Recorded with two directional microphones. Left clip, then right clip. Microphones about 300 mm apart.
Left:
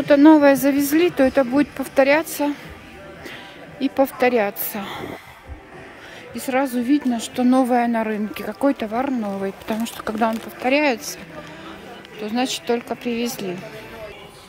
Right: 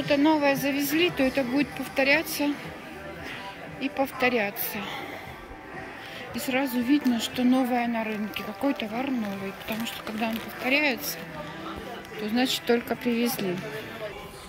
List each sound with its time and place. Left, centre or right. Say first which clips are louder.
0.0 s a woman's voice: left 10 dB; centre
3.8 s a woman's voice: left 7 dB; centre
6.3 s a woman's voice: left 6 dB; centre
12.2 s speech: left 3 dB; centre